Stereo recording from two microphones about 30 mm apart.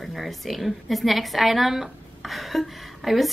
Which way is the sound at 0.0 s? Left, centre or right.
Centre.